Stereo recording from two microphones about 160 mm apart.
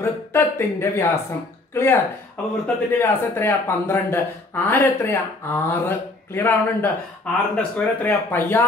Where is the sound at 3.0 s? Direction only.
15° left (ahead or behind).